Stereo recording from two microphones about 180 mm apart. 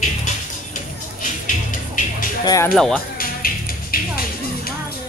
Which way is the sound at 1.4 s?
45° left (ahead or behind).